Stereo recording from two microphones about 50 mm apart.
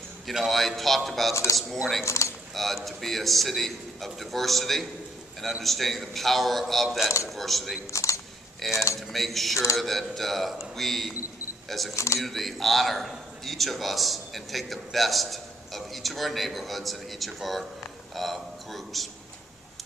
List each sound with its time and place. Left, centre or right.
0.5 s a man's voice: centre
1.3 s speech: left
1.6 s a man's voice: centre
2.0 s speech: left
2.5 s a man's voice: centre
7.9 s speech: left
8.6 s a man's voice: centre
11.9 s speech: left
12.3 s a man's voice: centre